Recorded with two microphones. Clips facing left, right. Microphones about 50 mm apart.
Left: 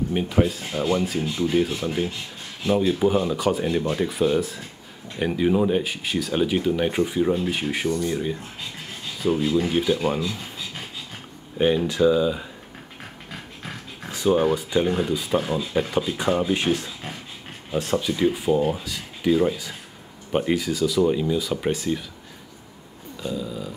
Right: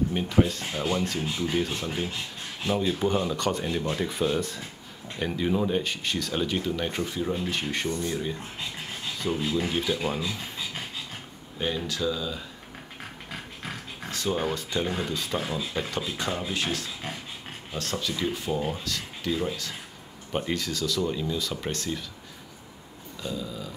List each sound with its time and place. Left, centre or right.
0.1 s speech: centre
10.3 s pant: centre
11.5 s speech: left
13.3 s dog: centre
14.1 s speech: centre
23.2 s speech: centre